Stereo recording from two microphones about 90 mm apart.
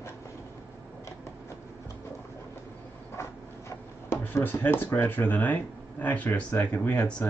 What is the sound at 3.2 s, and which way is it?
Speech, 30° left (ahead or behind).